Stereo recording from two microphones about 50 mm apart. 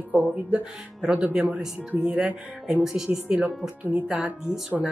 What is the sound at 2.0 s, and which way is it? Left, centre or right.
Speech, right.